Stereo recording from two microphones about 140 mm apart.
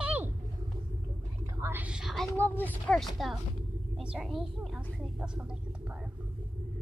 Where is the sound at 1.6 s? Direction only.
10° right (ahead or behind).